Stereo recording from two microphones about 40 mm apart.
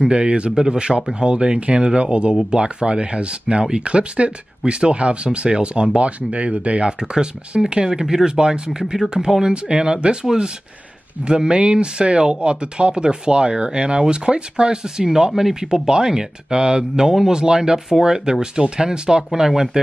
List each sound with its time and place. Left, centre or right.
0.0 s speech: right
11.2 s speech: right